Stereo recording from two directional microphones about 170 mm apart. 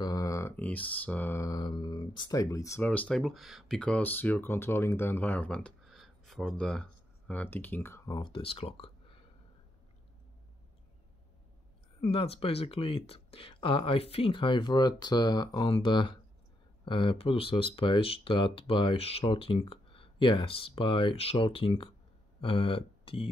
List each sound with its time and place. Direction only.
0.0 s mantra: 20° left (ahead or behind)
8.2 s speech: 30° left (ahead or behind)
12.0 s speech: 35° left (ahead or behind)